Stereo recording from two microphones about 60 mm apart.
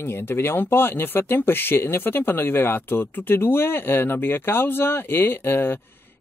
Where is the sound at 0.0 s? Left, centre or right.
Left.